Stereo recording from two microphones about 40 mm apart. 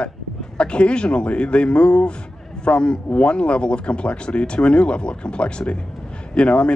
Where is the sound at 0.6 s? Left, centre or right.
Left.